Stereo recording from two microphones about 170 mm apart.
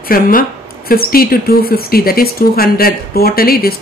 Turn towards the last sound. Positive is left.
turn(degrees=60)  # may be behind; listen again after turning